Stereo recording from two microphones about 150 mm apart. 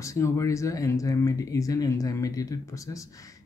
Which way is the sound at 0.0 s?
20° left (ahead or behind).